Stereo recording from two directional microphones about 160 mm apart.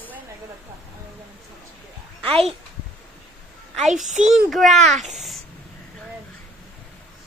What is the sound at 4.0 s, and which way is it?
Speech, 50° right (ahead or behind).